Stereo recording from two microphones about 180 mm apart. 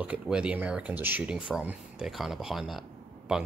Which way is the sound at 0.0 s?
5° right (ahead or behind).